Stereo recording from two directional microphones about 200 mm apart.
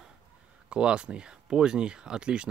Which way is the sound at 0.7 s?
5° right (ahead or behind).